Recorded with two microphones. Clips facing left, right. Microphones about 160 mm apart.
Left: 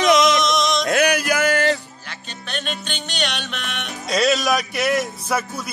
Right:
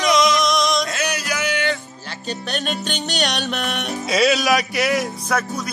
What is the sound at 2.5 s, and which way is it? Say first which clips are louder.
Music: right 2 dB; 40° right (ahead or behind).